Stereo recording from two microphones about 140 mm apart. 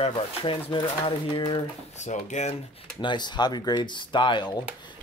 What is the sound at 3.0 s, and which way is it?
Speech, 35° left (ahead or behind).